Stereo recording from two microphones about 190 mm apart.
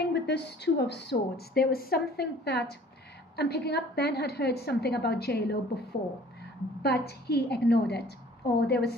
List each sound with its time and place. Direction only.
0.1 s speech: 60° left (ahead or behind)
6.8 s speech: 60° left (ahead or behind)